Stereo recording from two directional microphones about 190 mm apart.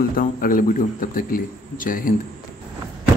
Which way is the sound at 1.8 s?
45° left (ahead or behind).